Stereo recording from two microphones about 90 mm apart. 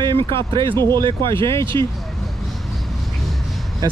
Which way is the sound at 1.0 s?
65° right (ahead or behind).